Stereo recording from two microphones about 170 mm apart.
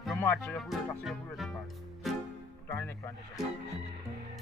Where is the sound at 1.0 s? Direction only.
Centre (ahead or behind).